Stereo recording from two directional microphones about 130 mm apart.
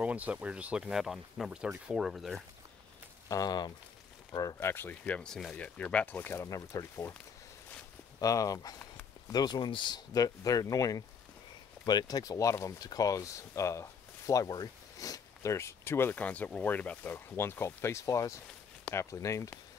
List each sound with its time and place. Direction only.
0.0 s speech: 10° right (ahead or behind)
3.3 s speech: 30° left (ahead or behind)
8.2 s speech: 25° left (ahead or behind)